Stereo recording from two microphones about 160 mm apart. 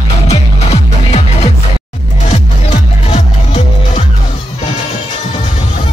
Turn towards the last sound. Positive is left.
turn(degrees=45)  # may be behind; listen again after turning